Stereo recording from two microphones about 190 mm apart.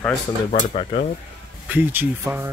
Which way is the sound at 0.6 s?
40° left (ahead or behind).